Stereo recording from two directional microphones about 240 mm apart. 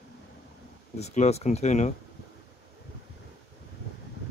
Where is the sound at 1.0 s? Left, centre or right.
Left.